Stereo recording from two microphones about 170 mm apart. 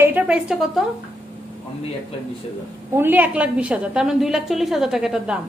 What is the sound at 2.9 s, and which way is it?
A woman's voice, 10° right (ahead or behind).